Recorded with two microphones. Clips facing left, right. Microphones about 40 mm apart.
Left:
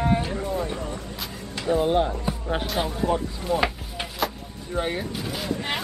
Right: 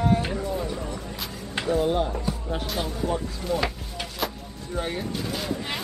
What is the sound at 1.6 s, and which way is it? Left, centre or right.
Speech, centre.